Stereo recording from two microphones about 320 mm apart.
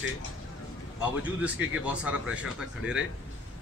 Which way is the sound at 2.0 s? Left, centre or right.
Centre.